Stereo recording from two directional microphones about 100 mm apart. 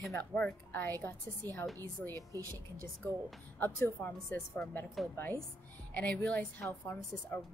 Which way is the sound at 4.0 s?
20° left (ahead or behind).